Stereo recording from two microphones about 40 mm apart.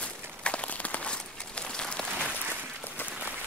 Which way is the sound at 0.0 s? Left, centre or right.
Left.